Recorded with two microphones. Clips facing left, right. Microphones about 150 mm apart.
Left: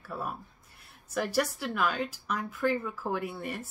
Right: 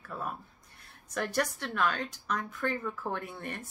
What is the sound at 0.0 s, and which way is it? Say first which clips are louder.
A woman's voice: left 1 dB; 5° left (ahead or behind).